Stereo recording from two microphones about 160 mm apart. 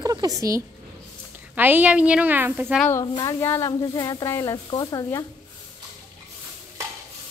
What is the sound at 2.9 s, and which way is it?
Speech, 20° left (ahead or behind).